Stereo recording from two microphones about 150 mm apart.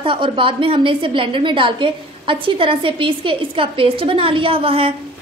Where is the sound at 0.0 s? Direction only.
35° right (ahead or behind).